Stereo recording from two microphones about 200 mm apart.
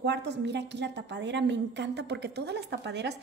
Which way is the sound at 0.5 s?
60° right (ahead or behind).